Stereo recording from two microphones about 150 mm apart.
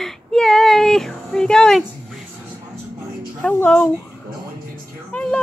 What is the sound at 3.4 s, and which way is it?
Speech, 10° left (ahead or behind).